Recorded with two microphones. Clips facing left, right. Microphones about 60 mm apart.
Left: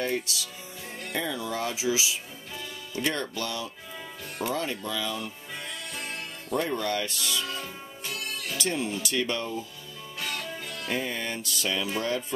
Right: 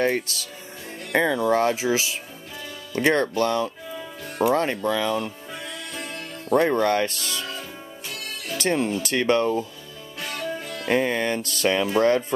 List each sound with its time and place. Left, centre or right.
0.0 s speech: right
6.5 s speech: right
8.5 s music: right
8.9 s speech: right
10.1 s music: right
10.9 s speech: right